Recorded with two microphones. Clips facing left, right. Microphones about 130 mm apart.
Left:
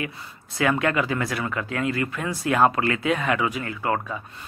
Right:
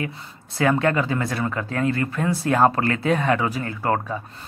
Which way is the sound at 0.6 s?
30° right (ahead or behind).